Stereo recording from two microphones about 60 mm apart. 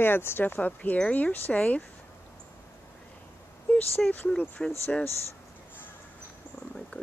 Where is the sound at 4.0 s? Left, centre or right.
Centre.